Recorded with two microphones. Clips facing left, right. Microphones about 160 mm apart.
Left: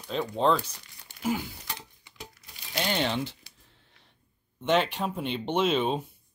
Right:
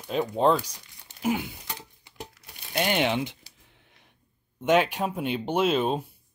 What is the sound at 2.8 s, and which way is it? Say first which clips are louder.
Speech: right 3 dB; 15° right (ahead or behind).